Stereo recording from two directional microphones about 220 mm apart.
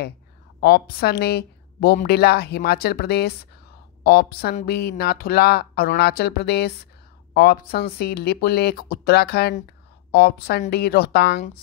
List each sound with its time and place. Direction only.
0.6 s speech: 45° left (ahead or behind)